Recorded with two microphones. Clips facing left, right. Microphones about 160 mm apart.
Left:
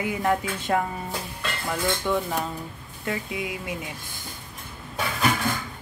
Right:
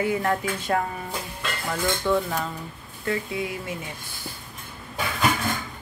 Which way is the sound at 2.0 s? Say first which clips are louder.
Right 2 dB; 15° left (ahead or behind).